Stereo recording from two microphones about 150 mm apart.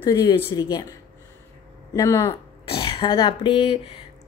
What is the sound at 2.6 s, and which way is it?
Speech, 35° left (ahead or behind).